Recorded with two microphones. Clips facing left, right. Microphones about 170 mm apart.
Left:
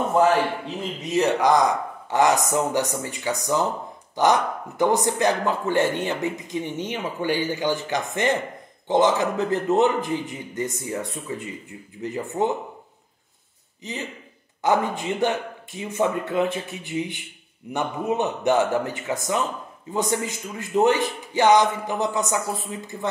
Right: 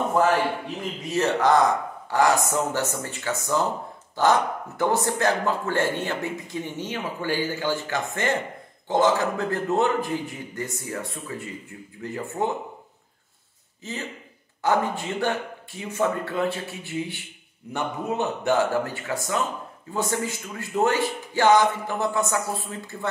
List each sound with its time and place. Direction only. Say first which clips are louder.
1.0 s a man's voice: left 2 dB; 15° left (ahead or behind)
13.8 s a man's voice: left 1 dB; 15° left (ahead or behind)